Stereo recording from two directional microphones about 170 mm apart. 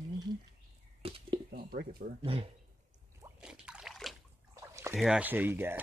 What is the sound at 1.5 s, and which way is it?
Speech, 55° right (ahead or behind).